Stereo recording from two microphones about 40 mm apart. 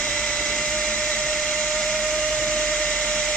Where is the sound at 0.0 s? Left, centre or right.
Centre.